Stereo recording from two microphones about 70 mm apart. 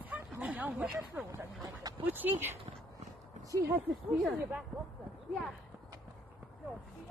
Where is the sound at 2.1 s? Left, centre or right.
Right.